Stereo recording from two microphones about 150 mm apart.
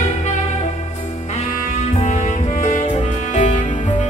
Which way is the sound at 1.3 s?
50° left (ahead or behind).